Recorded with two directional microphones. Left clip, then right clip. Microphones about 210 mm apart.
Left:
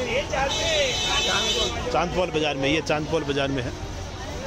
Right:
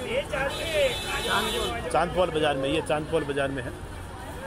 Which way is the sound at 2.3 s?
15° left (ahead or behind).